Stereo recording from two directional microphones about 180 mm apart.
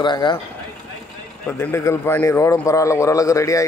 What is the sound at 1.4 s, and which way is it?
Speech, 10° left (ahead or behind).